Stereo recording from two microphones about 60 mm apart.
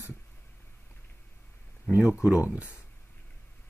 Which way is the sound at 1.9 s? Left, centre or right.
Left.